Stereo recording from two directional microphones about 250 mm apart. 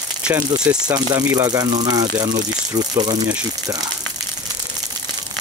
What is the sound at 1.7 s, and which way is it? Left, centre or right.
Speech, right.